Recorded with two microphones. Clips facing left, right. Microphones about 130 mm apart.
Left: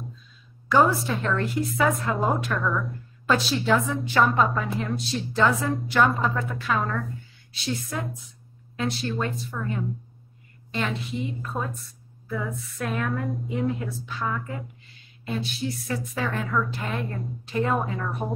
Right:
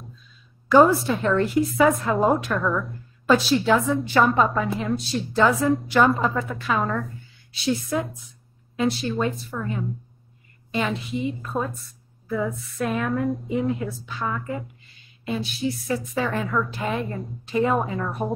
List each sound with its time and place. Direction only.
0.7 s a woman's voice: centre (ahead or behind)
8.7 s a woman's voice: centre (ahead or behind)
10.7 s a woman's voice: 5° right (ahead or behind)
11.5 s a woman's voice: 25° right (ahead or behind)
12.3 s a woman's voice: 5° right (ahead or behind)